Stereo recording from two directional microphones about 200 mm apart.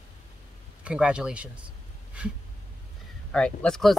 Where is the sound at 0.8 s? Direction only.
5° right (ahead or behind).